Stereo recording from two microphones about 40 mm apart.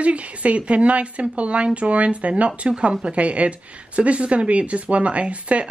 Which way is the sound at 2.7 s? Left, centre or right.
Right.